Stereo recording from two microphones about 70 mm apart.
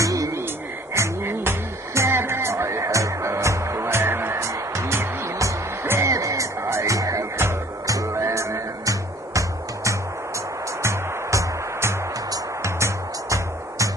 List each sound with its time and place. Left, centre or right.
0.0 s a sound: right
0.9 s music: right
10.8 s music: right